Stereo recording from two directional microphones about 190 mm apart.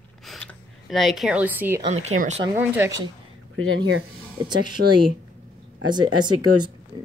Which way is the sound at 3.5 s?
90° right.